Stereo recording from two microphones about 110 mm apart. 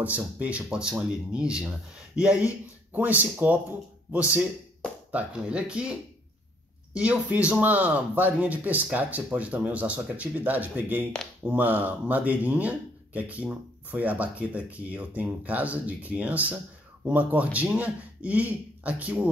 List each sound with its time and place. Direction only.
0.4 s speech: 10° right (ahead or behind)